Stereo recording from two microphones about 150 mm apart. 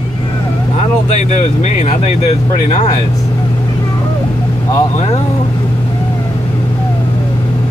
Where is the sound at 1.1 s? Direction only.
50° left (ahead or behind).